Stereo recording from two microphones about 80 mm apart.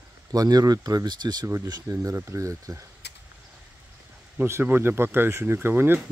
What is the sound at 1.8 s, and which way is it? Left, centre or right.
Speech, right.